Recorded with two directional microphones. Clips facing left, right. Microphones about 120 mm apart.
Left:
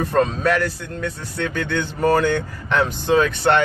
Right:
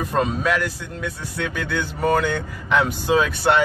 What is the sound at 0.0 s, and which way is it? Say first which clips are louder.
Speech: left 3 dB; 5° right (ahead or behind).